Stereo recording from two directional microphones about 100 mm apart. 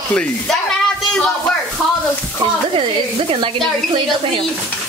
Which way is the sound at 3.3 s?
55° right (ahead or behind).